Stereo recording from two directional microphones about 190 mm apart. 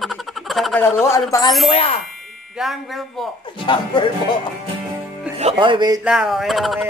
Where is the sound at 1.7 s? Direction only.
30° left (ahead or behind).